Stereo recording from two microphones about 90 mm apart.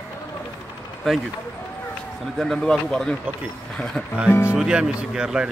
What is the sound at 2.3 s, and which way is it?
A man's voice, 5° left (ahead or behind).